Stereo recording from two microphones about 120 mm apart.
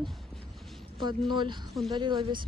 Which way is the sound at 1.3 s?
40° right (ahead or behind).